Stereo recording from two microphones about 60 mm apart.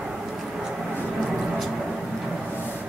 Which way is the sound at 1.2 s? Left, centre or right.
Centre.